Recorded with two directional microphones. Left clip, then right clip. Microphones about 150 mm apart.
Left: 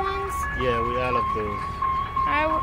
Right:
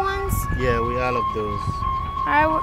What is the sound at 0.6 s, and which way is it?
Music, 85° right.